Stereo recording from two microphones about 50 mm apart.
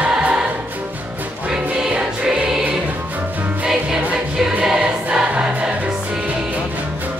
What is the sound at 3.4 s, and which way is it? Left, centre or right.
Music, right.